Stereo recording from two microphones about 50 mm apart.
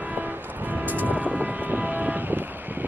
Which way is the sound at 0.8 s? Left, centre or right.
Right.